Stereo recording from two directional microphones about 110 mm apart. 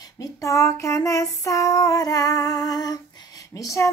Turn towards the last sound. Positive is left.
turn(degrees=30)  # may be behind; listen again after turning